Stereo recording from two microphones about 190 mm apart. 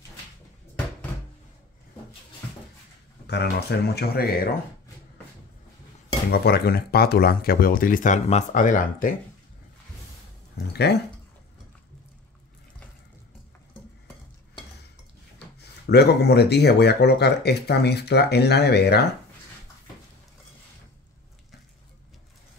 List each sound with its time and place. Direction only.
3.3 s speech: 60° left (ahead or behind)
6.3 s speech: 55° left (ahead or behind)
10.7 s speech: 60° left (ahead or behind)
15.9 s speech: 60° left (ahead or behind)